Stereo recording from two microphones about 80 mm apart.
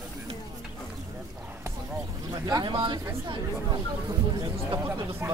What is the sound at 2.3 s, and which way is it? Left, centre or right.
Speech, right.